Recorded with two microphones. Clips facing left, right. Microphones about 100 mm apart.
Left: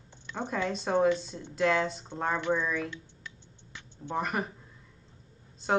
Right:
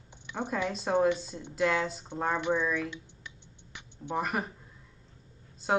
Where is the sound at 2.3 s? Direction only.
20° right (ahead or behind).